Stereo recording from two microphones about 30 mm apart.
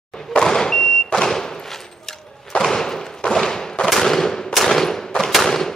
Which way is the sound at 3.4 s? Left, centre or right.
Centre.